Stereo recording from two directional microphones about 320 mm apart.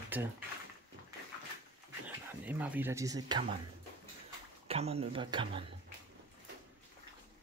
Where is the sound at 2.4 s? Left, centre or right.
Centre.